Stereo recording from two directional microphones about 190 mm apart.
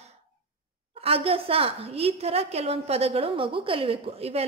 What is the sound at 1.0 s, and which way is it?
A woman's voice, 30° right (ahead or behind).